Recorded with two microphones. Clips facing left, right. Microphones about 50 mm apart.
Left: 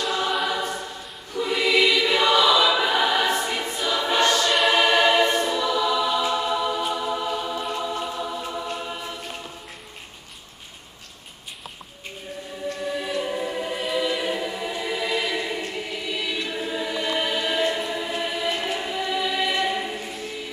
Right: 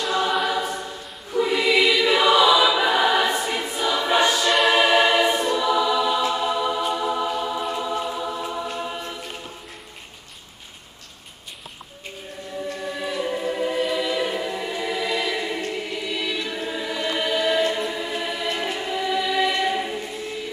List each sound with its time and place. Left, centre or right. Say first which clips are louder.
0.0 s choir: right 2 dB; centre
12.6 s choir: left 2 dB; centre